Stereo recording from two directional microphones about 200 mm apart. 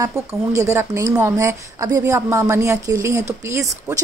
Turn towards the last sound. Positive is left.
turn(degrees=-15)  # may be behind; listen again after turning